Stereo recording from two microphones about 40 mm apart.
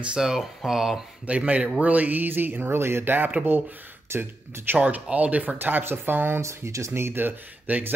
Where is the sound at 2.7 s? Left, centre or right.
Right.